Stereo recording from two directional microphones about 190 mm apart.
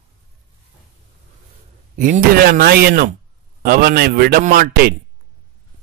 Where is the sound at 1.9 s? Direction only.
45° right (ahead or behind).